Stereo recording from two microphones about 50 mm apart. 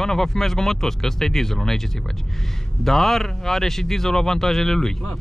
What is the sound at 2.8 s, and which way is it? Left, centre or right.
Speech, centre.